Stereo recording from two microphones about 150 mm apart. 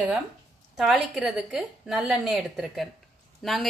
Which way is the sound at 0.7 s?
Centre (ahead or behind).